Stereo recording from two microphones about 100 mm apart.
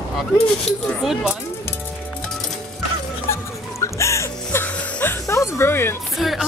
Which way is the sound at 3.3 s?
30° left (ahead or behind).